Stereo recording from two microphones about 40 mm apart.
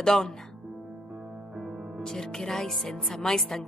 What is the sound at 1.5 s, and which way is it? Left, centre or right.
Music, centre.